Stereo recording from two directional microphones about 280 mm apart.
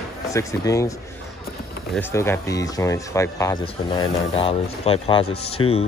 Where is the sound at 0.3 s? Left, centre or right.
Centre.